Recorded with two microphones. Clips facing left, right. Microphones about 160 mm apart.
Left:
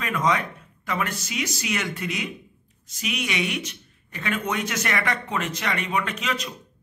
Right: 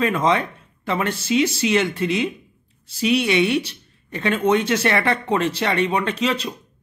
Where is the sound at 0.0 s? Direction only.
30° right (ahead or behind).